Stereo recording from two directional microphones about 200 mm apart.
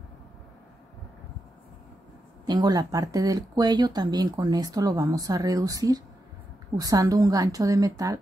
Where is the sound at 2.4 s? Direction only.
20° right (ahead or behind).